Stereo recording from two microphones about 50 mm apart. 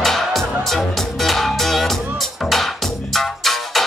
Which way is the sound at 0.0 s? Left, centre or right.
Centre.